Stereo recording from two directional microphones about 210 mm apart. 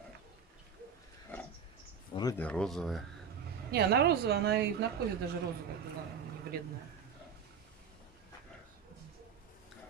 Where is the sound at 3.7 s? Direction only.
50° right (ahead or behind).